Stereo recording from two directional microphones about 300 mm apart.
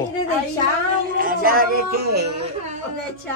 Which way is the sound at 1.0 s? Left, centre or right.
Right.